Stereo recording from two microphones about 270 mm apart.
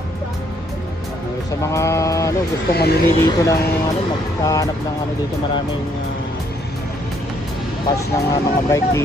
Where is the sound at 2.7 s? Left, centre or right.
Left.